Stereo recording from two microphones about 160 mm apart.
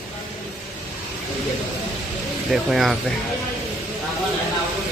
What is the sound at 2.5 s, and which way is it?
Speech, centre (ahead or behind).